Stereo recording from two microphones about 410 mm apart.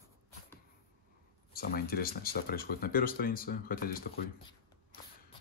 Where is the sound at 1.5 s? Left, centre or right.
Left.